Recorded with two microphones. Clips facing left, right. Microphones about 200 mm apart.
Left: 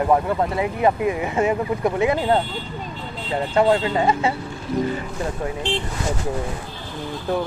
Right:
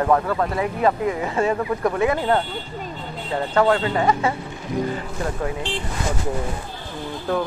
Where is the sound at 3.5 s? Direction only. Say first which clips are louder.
Left 1 dB; 20° left (ahead or behind).